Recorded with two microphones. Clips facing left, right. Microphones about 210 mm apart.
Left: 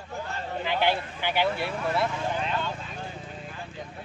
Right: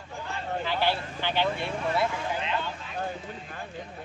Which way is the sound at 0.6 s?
15° left (ahead or behind).